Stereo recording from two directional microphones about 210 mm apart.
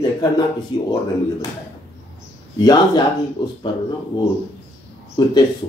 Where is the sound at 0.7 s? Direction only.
20° left (ahead or behind).